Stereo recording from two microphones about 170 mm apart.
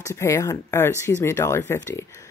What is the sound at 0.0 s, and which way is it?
Speech, 15° left (ahead or behind).